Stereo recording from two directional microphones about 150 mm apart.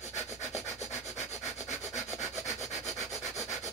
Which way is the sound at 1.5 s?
50° left (ahead or behind).